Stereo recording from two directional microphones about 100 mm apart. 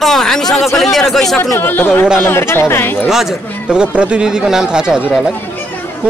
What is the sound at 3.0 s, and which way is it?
A man's voice, 5° right (ahead or behind).